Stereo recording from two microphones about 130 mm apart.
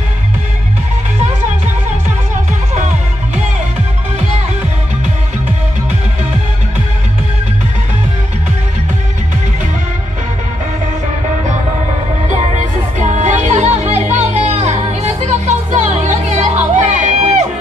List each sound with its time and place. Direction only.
12.5 s music: 65° right (ahead or behind)